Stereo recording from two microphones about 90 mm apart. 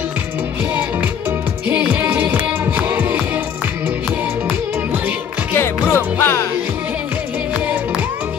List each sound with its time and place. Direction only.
1.7 s music: 15° right (ahead or behind)
5.5 s music: 25° left (ahead or behind)